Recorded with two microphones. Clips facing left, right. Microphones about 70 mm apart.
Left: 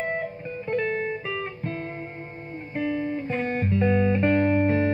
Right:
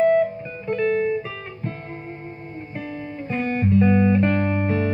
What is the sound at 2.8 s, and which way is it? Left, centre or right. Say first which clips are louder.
Music: left 8 dB; left.